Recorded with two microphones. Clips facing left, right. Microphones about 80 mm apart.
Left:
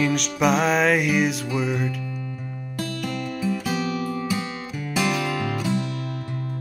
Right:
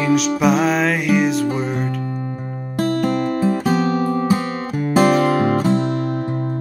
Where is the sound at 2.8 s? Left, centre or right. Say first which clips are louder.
Right 11 dB; right.